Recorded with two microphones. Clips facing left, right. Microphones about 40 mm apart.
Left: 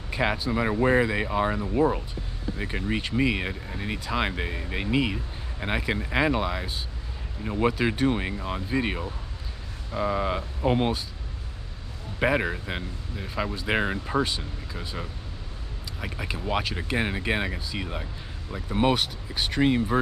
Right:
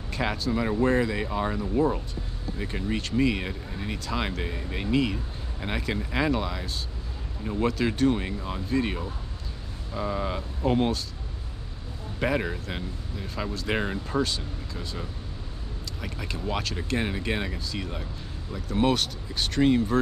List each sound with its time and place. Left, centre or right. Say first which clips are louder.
0.1 s speech: left 2 dB; centre
12.2 s speech: left 3 dB; centre